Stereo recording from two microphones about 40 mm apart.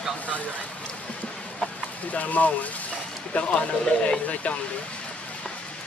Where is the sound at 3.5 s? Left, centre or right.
Left.